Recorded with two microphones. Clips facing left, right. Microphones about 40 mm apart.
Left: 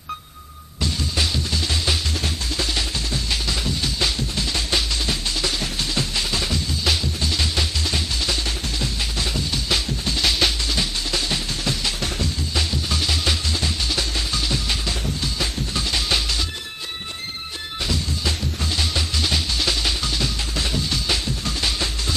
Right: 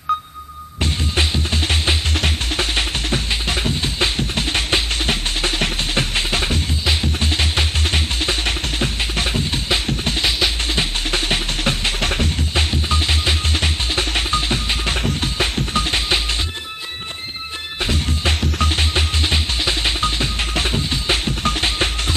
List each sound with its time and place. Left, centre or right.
0.8 s music: right
12.5 s music: right
17.8 s music: right